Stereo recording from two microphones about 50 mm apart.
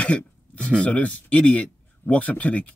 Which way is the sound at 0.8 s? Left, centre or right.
Left.